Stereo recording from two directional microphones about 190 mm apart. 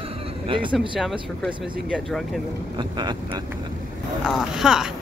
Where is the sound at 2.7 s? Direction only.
25° right (ahead or behind).